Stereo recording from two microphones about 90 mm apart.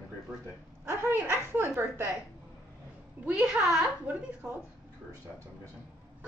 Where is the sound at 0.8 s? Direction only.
25° right (ahead or behind).